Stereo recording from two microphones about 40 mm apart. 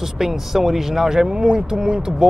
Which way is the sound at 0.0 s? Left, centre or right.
Centre.